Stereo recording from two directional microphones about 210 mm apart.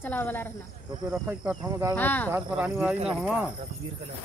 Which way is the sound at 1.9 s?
10° left (ahead or behind).